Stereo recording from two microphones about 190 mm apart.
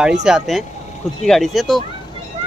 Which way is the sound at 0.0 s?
5° right (ahead or behind).